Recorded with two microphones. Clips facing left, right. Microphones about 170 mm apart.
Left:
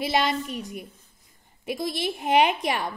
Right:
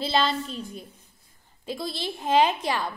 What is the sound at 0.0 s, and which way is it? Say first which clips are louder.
Speech: even; 15° left (ahead or behind).